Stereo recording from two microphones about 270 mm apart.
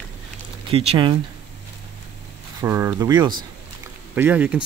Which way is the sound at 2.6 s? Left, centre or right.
Centre.